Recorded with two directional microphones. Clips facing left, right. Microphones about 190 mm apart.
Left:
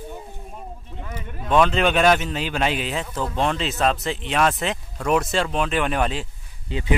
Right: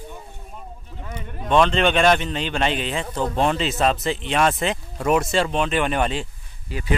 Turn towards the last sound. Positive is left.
turn(degrees=20)  # may be behind; listen again after turning